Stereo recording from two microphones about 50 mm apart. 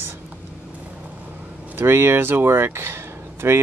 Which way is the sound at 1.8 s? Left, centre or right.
Right.